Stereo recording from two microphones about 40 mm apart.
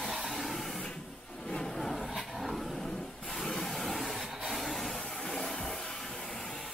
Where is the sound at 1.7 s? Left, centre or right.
Centre.